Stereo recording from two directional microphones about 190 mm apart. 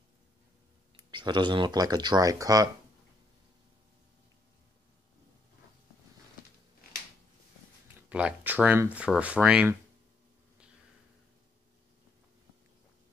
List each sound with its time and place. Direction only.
0.9 s speech: 25° right (ahead or behind)
7.9 s speech: 5° right (ahead or behind)